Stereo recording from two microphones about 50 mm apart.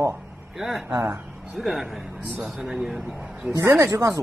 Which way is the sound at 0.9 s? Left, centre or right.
Right.